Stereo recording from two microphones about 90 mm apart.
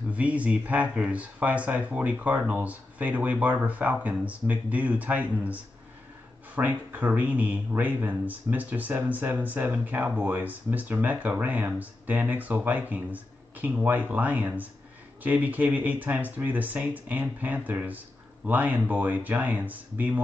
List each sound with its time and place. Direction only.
0.1 s speech: 15° right (ahead or behind)